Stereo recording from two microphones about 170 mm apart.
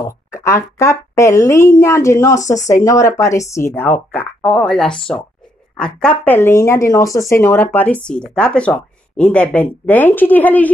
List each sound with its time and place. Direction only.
0.0 s speech: 15° left (ahead or behind)